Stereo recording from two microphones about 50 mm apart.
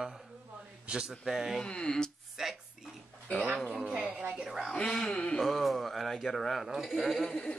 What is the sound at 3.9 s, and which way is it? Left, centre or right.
Speech, centre.